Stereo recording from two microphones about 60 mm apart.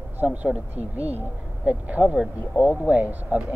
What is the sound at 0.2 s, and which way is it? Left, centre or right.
Speech, right.